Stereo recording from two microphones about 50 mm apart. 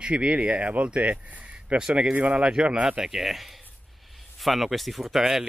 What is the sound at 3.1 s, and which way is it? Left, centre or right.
Speech, centre.